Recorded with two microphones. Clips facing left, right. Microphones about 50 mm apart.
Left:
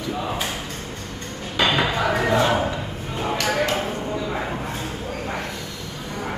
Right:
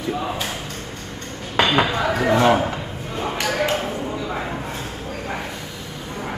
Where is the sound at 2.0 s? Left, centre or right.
Centre.